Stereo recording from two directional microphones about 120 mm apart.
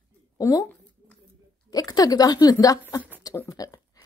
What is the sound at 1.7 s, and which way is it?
Speech, 30° left (ahead or behind).